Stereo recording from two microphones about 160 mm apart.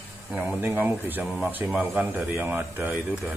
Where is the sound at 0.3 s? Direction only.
10° right (ahead or behind).